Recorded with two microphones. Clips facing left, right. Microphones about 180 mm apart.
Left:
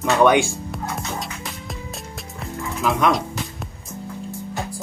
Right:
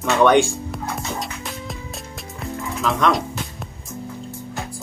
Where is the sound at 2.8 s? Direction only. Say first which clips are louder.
Even; centre (ahead or behind).